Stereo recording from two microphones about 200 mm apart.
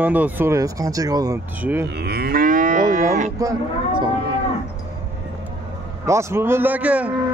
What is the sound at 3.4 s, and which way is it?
Speech, 15° right (ahead or behind).